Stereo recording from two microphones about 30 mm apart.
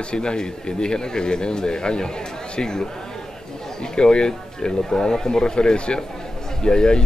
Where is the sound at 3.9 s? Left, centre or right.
Left.